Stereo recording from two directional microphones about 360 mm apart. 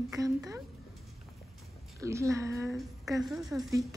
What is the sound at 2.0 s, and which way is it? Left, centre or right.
A woman's voice, centre.